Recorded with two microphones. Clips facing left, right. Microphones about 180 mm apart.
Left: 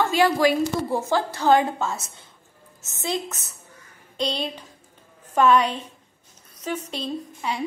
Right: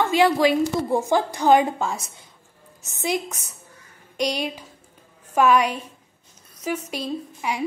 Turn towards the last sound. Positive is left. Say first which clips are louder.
# right 1 dB
turn(degrees=-10)  # may be behind; listen again after turning